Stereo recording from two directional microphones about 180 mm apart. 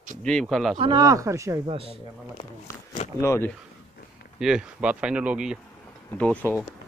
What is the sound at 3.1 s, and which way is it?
Speech, 15° left (ahead or behind).